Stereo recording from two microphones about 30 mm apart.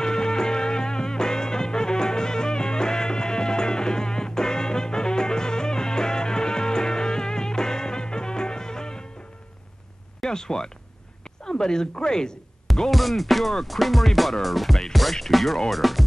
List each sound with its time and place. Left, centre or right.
0.0 s music: left
10.2 s speech: left
12.9 s music: centre